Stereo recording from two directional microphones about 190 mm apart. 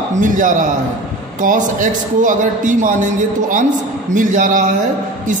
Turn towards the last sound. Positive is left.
turn(degrees=-45)  # may be behind; listen again after turning